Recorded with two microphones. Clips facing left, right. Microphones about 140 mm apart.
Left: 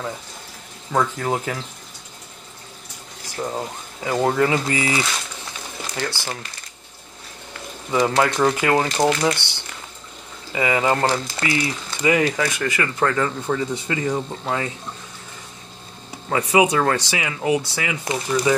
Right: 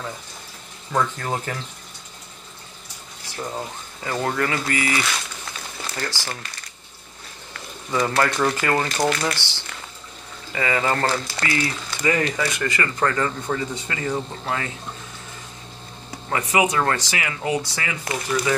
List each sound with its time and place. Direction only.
0.9 s speech: 15° left (ahead or behind)
3.5 s speech: 15° left (ahead or behind)
7.9 s speech: 20° left (ahead or behind); by 13.6 s 5° left (ahead or behind)
13.8 s speech: 15° left (ahead or behind)
16.3 s speech: 15° left (ahead or behind)